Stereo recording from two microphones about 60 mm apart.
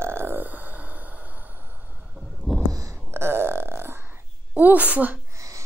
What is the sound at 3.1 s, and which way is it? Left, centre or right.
Burping, right.